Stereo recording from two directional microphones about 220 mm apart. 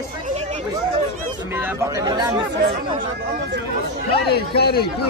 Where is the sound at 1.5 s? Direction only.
10° right (ahead or behind).